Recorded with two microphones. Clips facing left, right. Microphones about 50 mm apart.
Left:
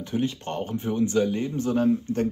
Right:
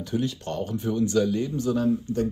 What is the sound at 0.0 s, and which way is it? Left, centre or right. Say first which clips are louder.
Speech: left 1 dB; left.